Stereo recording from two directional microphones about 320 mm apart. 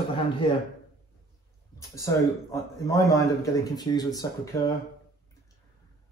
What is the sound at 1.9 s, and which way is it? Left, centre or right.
Speech, centre.